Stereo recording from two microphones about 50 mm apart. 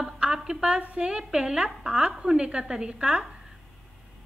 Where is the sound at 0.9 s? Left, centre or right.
Centre.